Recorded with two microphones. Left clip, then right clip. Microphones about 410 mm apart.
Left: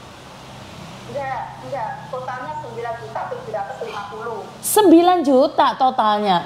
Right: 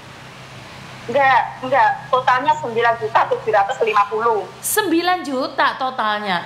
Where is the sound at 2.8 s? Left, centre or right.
Right.